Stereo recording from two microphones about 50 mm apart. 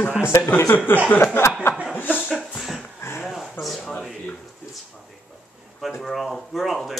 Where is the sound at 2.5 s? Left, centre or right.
Centre.